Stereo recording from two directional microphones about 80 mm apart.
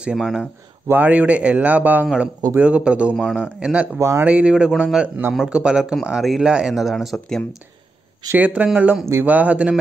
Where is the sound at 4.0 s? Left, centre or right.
Right.